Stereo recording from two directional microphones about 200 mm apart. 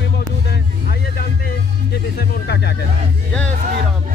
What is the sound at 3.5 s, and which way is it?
Speech, 40° right (ahead or behind).